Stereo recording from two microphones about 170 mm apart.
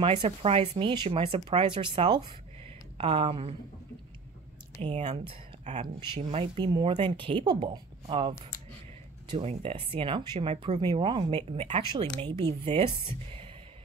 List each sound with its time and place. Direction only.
0.0 s speech: 35° right (ahead or behind)
4.9 s speech: 40° right (ahead or behind)
9.4 s speech: 35° right (ahead or behind)
12.2 s speech: 25° right (ahead or behind)